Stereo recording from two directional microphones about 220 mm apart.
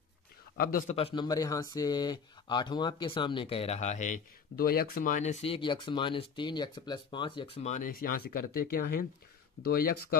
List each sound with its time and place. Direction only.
0.6 s a man's voice: 40° left (ahead or behind)
0.9 s speech: 25° left (ahead or behind); by 10.1 s 45° left (ahead or behind)